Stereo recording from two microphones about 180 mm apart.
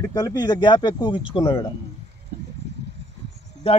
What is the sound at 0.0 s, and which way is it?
Speech, 20° left (ahead or behind).